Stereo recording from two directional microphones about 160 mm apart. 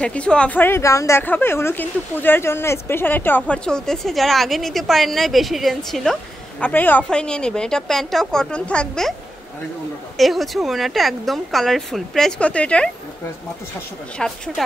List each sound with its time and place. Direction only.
0.0 s a woman's voice: 5° left (ahead or behind)
10.1 s speech: centre (ahead or behind)